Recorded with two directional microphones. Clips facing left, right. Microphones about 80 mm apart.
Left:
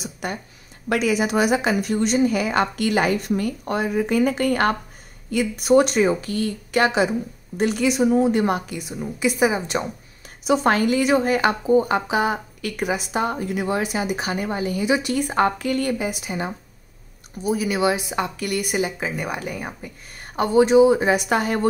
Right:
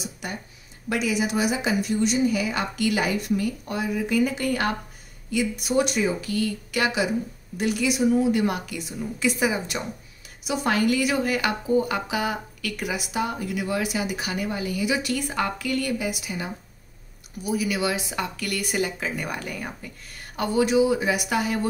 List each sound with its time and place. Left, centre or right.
0.0 s a woman's voice: left
8.7 s speech: centre
9.4 s a woman's voice: left
13.1 s a woman's voice: left
15.3 s a woman's voice: left